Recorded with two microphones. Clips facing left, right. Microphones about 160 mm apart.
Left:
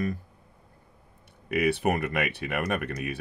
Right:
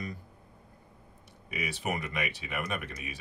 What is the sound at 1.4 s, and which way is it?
Speech, 60° left (ahead or behind).